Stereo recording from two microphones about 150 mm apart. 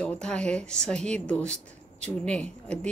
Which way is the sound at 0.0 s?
5° left (ahead or behind).